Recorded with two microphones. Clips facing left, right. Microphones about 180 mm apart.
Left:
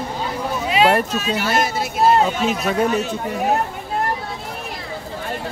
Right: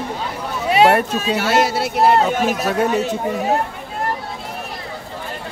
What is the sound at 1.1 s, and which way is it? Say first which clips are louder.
Speech: right 2 dB; 70° right (ahead or behind).